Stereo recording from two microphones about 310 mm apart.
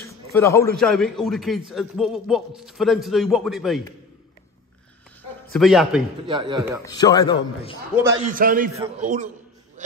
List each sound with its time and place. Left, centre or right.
0.0 s a sound: centre
0.7 s a man's voice: centre
5.5 s a man's voice: centre
6.2 s speech: centre
6.8 s a man's voice: centre
7.9 s speech: centre
8.3 s a man's voice: right
9.8 s a sound: right